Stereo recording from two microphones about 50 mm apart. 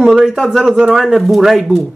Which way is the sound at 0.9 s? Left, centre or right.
Centre.